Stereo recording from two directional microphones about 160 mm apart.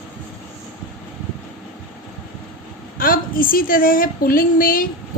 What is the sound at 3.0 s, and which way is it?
A woman's voice, 60° left (ahead or behind).